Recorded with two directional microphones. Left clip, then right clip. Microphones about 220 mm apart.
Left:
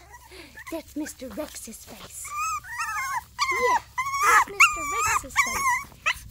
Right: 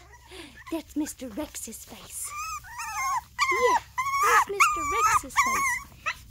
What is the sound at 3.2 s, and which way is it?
Dog, 5° left (ahead or behind).